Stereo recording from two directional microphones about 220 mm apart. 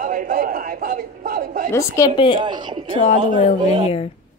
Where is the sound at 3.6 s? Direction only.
20° right (ahead or behind).